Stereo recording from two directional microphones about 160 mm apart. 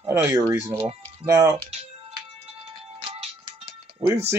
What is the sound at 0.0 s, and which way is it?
Speech, 15° right (ahead or behind).